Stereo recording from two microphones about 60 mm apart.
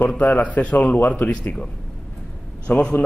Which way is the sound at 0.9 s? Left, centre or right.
Left.